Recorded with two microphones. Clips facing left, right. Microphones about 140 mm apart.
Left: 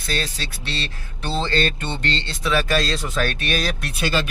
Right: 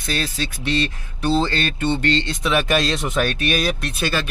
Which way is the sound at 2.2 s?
20° right (ahead or behind).